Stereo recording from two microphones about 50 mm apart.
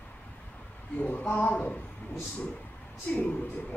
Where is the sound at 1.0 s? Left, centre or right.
Left.